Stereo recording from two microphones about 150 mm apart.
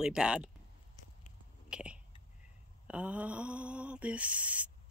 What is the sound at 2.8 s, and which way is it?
Mantra, 10° right (ahead or behind).